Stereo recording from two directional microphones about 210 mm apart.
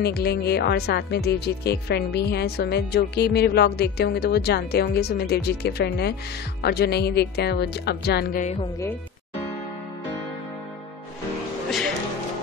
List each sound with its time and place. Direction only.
0.0 s speech: 50° left (ahead or behind); by 8.6 s 35° left (ahead or behind)